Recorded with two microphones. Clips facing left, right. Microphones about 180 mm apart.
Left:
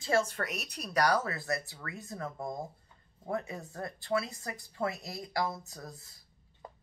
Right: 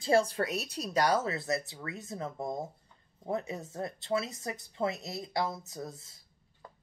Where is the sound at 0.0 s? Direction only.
30° right (ahead or behind).